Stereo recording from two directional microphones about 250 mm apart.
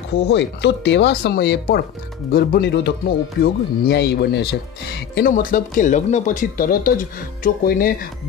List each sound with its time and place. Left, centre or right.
0.3 s speech: left